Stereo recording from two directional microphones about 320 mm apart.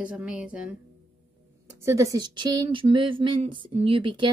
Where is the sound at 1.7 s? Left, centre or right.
Centre.